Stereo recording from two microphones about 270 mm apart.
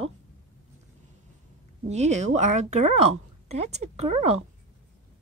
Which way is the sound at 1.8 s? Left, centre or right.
Right.